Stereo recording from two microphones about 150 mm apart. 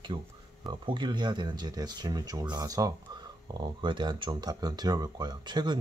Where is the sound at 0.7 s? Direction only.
30° right (ahead or behind).